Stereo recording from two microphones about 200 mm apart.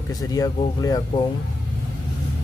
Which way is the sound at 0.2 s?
20° left (ahead or behind).